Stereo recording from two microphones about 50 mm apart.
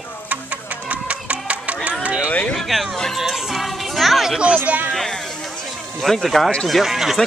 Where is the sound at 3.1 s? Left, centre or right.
Centre.